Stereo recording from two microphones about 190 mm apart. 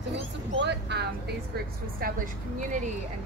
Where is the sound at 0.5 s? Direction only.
65° right (ahead or behind).